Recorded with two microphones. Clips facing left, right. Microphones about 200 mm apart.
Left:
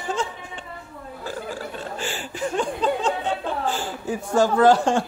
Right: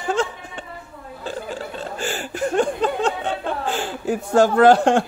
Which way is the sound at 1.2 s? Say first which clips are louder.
Right 2 dB; 25° right (ahead or behind).